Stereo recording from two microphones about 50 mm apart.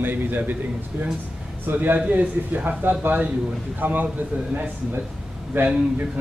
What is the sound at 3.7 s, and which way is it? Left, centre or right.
Speech, right.